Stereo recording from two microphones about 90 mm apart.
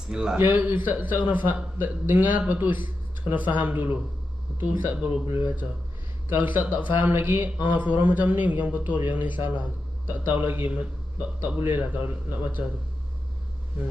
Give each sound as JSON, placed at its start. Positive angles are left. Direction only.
{"t": 0.1, "sound": "speech", "side_deg": -10}
{"t": 0.4, "sound": "a man's voice", "side_deg": -25}
{"t": 5.2, "sound": "a man's voice", "side_deg": -30}